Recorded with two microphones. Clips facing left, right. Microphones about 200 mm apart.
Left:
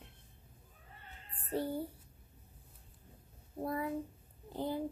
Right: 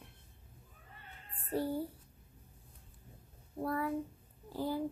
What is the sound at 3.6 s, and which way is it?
A child's voice, 20° left (ahead or behind).